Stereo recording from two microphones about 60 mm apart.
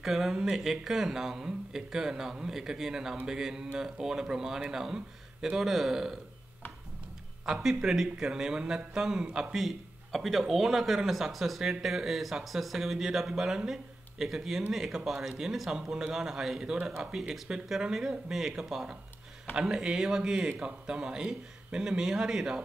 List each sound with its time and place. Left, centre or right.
0.0 s speech: centre
7.4 s speech: centre
9.6 s speech: centre